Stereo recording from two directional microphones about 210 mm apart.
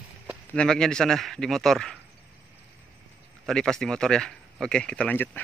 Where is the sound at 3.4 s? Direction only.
Centre (ahead or behind).